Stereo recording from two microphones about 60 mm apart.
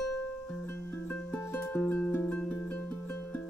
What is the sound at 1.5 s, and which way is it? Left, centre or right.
Music, left.